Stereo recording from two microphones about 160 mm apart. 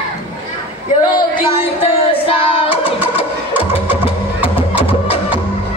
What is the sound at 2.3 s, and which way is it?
Music, 35° left (ahead or behind).